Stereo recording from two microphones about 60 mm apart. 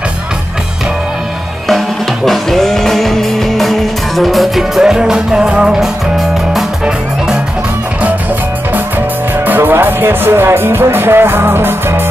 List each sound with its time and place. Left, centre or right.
2.2 s music: centre
9.4 s music: right